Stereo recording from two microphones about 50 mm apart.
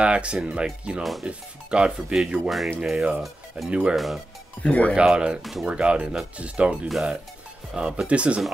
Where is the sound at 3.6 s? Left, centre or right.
Centre.